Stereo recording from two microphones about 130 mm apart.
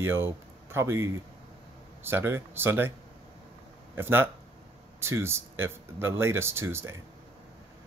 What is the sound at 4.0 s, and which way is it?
Speech, 15° right (ahead or behind).